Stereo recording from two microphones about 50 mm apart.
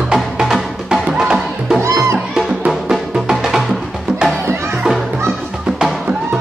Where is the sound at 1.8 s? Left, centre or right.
Right.